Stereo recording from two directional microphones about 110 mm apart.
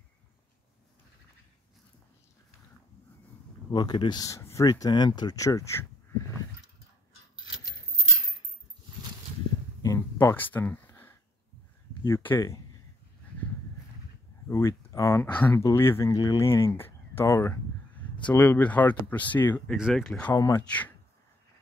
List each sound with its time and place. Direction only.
3.7 s speech: 40° left (ahead or behind)
9.9 s a sound: 25° left (ahead or behind)
12.0 s speech: 20° left (ahead or behind)
14.5 s speech: 25° left (ahead or behind)
15.3 s speech: 20° left (ahead or behind)
16.2 s speech: 35° left (ahead or behind)
16.4 s a sound: 25° left (ahead or behind)
18.3 s speech: 20° left (ahead or behind)
20.3 s speech: 35° left (ahead or behind)
20.6 s speech: 15° left (ahead or behind)